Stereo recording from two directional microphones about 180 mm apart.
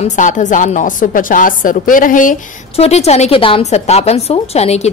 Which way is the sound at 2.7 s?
35° left (ahead or behind).